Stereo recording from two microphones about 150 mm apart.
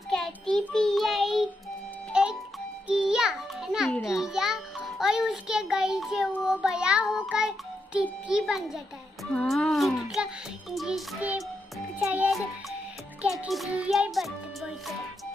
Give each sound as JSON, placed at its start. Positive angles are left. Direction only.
{"t": 0.6, "sound": "child singing", "side_deg": 5}
{"t": 2.1, "sound": "music", "side_deg": -5}
{"t": 6.4, "sound": "child singing", "side_deg": -5}
{"t": 12.0, "sound": "music", "side_deg": -10}
{"t": 13.4, "sound": "music", "side_deg": -5}